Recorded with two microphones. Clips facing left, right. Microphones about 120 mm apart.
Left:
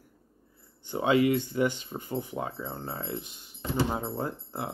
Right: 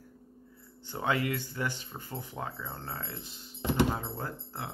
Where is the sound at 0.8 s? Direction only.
15° left (ahead or behind).